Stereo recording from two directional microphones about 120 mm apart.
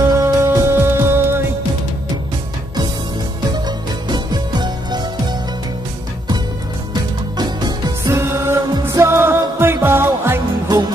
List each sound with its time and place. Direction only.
0.0 s music: 25° right (ahead or behind)
3.5 s music: 35° right (ahead or behind)
6.9 s music: 35° right (ahead or behind)
8.1 s music: 20° right (ahead or behind)